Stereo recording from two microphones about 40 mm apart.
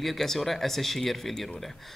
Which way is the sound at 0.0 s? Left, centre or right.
Centre.